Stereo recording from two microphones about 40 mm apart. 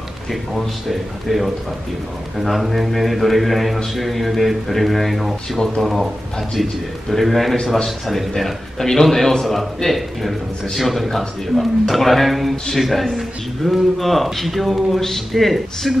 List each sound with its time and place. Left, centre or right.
0.3 s a man's voice: centre